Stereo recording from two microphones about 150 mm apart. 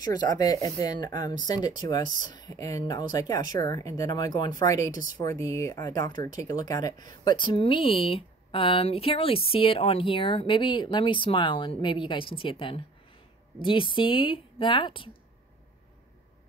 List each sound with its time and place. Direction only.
0.0 s speech: 25° left (ahead or behind)